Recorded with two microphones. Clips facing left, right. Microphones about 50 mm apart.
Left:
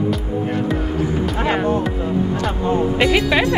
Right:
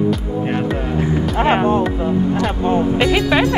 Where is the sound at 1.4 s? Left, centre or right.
Right.